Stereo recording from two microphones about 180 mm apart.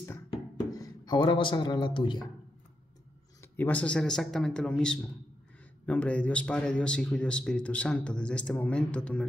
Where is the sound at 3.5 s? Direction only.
10° left (ahead or behind).